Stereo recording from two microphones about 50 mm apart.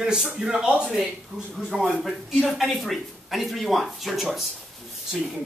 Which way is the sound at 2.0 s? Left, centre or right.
Centre.